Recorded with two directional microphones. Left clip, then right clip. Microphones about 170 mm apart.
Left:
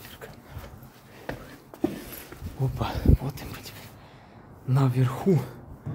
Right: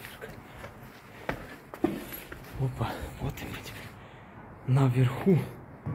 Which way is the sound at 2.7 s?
25° left (ahead or behind).